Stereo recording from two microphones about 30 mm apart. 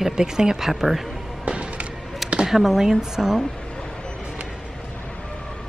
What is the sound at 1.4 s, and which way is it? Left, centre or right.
Music, right.